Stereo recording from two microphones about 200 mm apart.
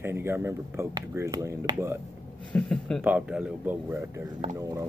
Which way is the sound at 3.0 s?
5° right (ahead or behind).